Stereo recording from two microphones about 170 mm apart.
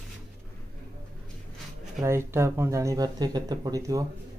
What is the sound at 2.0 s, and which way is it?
Speech, 15° right (ahead or behind).